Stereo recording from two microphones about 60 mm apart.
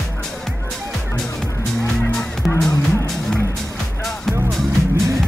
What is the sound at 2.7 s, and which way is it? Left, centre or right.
Music, left.